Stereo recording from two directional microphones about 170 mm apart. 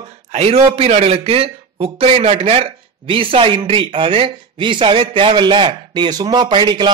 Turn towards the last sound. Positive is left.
turn(degrees=-25)  # may be behind; listen again after turning